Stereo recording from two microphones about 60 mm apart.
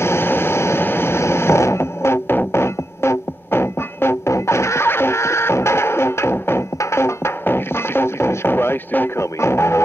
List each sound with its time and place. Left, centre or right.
0.0 s vehicle: left
6.8 s music: left
9.2 s music: left